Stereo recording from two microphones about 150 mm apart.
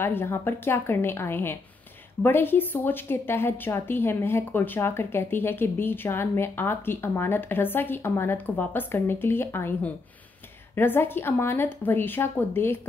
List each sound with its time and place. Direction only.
0.0 s a woman's voice: 15° left (ahead or behind)